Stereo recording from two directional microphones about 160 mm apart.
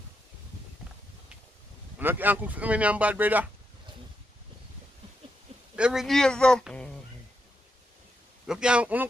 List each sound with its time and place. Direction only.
2.0 s speech: 10° right (ahead or behind)
5.8 s speech: 5° right (ahead or behind)
8.5 s speech: 5° right (ahead or behind)